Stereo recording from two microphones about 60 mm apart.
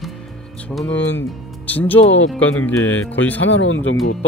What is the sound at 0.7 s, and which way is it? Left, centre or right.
Music, left.